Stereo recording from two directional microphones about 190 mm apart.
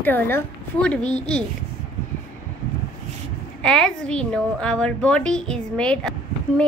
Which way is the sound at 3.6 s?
5° left (ahead or behind).